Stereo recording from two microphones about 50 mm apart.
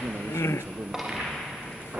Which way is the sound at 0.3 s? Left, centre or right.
Left.